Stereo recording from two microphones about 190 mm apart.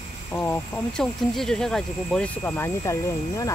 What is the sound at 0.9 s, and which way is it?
Speech, centre (ahead or behind).